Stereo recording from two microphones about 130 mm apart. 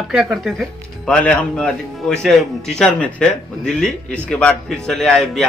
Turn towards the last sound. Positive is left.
turn(degrees=0)  # may be behind; listen again after turning